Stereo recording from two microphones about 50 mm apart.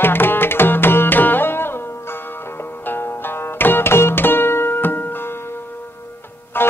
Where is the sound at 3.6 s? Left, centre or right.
Left.